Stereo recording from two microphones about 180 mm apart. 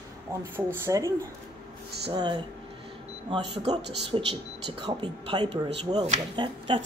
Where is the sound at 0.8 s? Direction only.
20° right (ahead or behind).